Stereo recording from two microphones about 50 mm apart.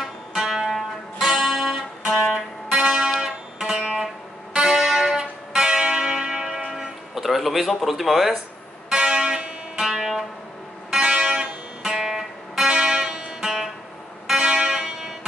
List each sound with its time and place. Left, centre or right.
0.0 s music: centre
2.8 s music: centre
8.9 s music: centre
10.9 s music: right
11.8 s music: centre